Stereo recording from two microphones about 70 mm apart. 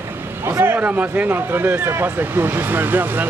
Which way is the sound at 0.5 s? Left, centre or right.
Right.